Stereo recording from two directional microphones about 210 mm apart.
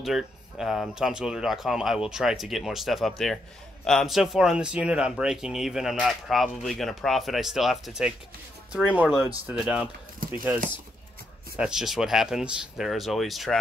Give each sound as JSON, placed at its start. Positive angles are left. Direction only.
{"t": 0.0, "sound": "speech", "side_deg": 0}
{"t": 11.5, "sound": "speech", "side_deg": -5}